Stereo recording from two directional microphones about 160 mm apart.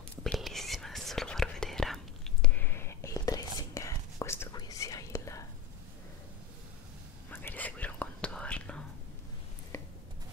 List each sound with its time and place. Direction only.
0.1 s whispering: 5° left (ahead or behind); by 5.4 s 20° left (ahead or behind)
7.2 s whispering: 10° left (ahead or behind)